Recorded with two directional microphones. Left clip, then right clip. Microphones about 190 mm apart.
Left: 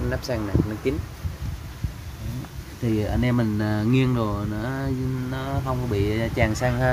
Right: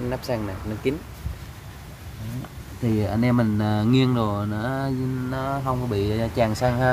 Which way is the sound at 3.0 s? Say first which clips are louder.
Right 3 dB; 15° right (ahead or behind).